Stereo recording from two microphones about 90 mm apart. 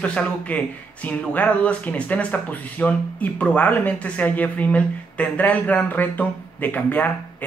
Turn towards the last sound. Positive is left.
turn(degrees=20)  # may be behind; listen again after turning